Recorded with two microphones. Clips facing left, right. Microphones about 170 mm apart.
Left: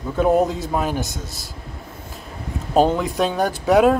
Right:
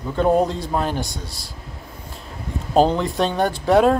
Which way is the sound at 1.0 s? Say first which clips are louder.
Left 1 dB; 45° left (ahead or behind).